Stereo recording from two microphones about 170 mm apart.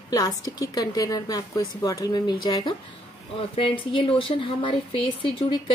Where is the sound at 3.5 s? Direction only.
30° left (ahead or behind).